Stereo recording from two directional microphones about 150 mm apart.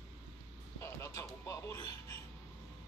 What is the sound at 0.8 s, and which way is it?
Speech, 15° left (ahead or behind).